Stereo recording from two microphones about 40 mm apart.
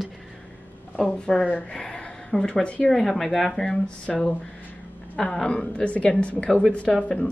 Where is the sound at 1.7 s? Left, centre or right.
Centre.